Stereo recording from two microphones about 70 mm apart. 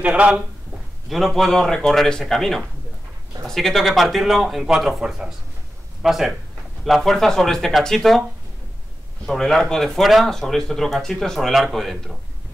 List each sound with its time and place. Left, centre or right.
0.0 s speech: centre
1.0 s speech: centre
9.2 s speech: centre